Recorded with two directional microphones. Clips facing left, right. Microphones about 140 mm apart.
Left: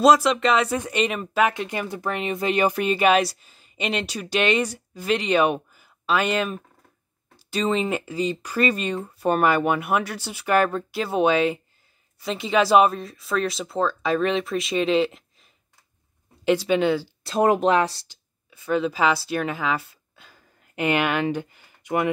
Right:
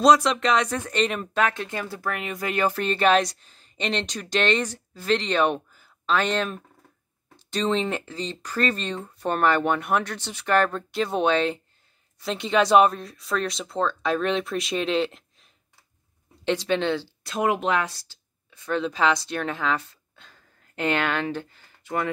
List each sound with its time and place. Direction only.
0.0 s speech: 5° left (ahead or behind)
16.4 s speech: 5° left (ahead or behind)
17.2 s speech: 35° left (ahead or behind)
18.0 s speech: 5° left (ahead or behind)